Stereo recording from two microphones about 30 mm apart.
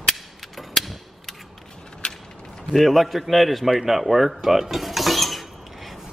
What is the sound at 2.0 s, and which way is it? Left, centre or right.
Mechanisms, left.